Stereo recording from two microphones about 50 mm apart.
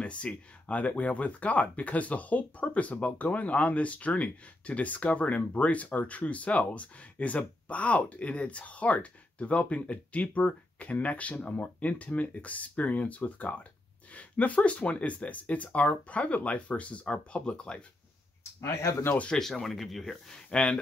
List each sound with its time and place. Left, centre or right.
0.0 s speech: left
18.6 s speech: left
19.3 s speech: centre
20.4 s speech: left